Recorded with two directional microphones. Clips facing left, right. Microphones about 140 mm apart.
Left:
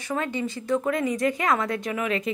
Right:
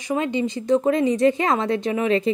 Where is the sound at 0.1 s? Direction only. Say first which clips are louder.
Right 5 dB; 20° right (ahead or behind).